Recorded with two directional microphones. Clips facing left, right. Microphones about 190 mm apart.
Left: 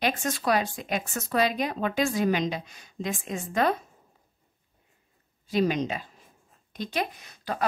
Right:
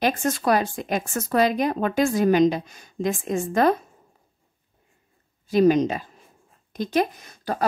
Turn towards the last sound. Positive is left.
turn(degrees=-45)  # may be behind; listen again after turning